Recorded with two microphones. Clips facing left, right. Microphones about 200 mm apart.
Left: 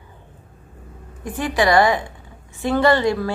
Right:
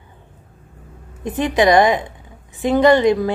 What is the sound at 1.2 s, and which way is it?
A woman's voice, 20° right (ahead or behind).